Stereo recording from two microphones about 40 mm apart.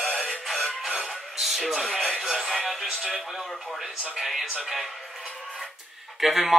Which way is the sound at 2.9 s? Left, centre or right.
Centre.